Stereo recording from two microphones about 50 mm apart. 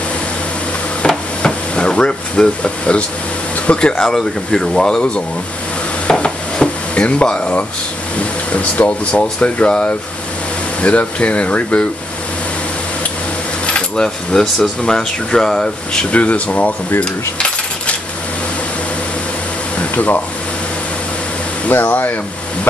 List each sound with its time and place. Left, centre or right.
1.0 s hammer: centre
3.6 s speech: left
6.0 s stir: centre
8.5 s speech: left
13.7 s speech: centre
16.1 s speech: left
17.0 s coin: centre
21.6 s speech: left